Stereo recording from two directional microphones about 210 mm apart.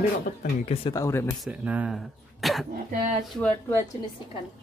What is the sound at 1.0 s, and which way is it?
Speech, 15° left (ahead or behind).